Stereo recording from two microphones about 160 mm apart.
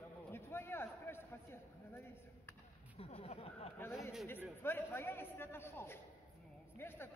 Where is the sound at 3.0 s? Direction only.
40° left (ahead or behind).